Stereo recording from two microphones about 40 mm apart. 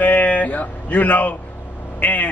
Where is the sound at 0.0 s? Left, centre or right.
Left.